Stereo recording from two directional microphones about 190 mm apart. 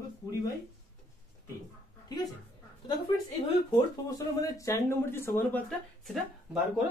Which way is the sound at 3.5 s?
20° left (ahead or behind).